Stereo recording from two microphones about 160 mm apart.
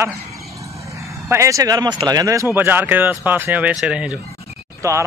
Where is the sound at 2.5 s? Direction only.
10° right (ahead or behind).